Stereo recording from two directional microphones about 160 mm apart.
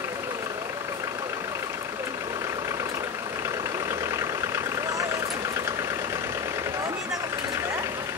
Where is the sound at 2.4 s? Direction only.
20° right (ahead or behind).